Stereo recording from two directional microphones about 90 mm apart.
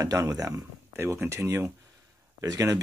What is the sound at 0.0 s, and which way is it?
Speech, 40° right (ahead or behind).